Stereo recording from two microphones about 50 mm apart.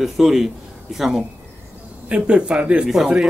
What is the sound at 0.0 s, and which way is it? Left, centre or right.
A man's voice, centre.